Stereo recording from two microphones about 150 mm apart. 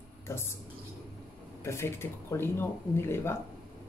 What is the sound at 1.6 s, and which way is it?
Speech, 15° left (ahead or behind).